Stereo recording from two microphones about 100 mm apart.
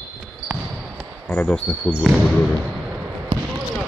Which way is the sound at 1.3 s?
10° left (ahead or behind).